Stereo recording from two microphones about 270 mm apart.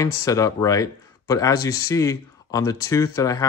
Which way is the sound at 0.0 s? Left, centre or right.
Centre.